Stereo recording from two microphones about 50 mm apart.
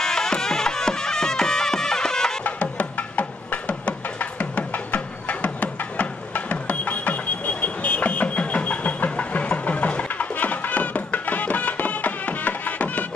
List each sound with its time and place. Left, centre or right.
0.0 s music: centre
2.4 s music: left